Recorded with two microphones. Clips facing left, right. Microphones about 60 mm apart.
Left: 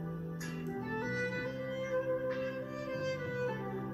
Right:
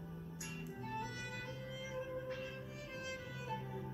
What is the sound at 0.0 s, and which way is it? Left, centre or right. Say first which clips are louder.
Music: left 8 dB; left.